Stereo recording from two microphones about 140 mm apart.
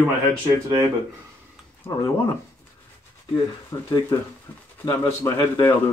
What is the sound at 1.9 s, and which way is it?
Speech, 25° left (ahead or behind).